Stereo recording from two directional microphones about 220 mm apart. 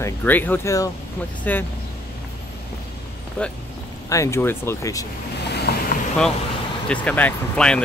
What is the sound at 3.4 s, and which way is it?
Speech, 5° left (ahead or behind).